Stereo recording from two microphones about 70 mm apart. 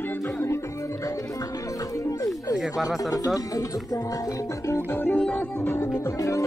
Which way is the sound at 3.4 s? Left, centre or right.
Left.